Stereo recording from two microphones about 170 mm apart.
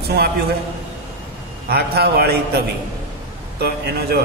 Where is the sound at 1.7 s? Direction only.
65° right (ahead or behind).